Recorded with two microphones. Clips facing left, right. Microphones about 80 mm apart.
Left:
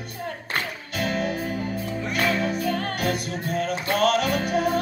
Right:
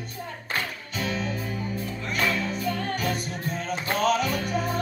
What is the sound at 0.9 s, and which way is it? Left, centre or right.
Music, left.